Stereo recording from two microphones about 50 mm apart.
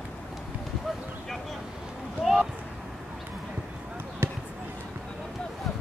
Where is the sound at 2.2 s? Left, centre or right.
Centre.